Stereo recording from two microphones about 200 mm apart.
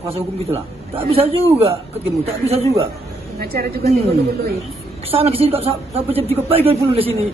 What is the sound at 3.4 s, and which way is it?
Speech, 50° right (ahead or behind).